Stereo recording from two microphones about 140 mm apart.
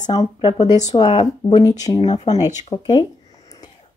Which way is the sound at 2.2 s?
25° left (ahead or behind).